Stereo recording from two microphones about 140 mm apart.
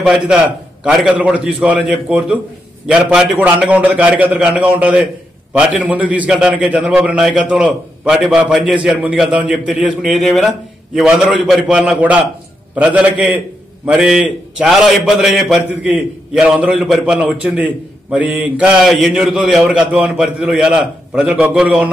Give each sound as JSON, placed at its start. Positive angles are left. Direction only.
{"t": 0.8, "sound": "a man's voice", "side_deg": -5}